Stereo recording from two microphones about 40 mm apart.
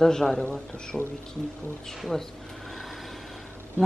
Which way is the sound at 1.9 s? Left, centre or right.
Centre.